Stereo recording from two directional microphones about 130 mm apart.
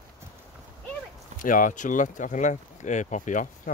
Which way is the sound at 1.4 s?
90° left.